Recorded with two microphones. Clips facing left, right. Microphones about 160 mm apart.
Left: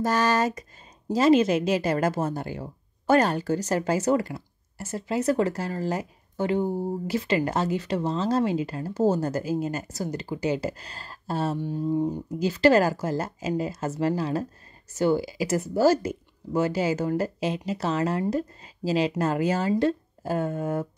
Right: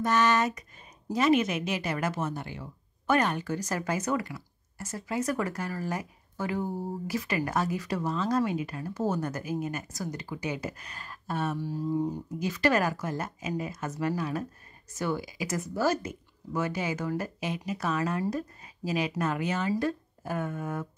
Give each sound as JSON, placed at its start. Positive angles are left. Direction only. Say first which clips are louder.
{"t": 0.0, "sound": "a woman's voice", "louder": "left 2 dB", "side_deg": 35}